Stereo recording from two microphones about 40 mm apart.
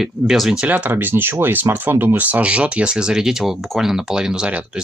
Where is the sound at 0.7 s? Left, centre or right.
Right.